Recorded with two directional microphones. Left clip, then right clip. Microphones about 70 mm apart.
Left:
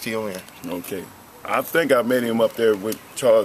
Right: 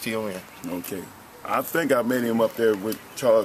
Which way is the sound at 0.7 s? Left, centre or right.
Left.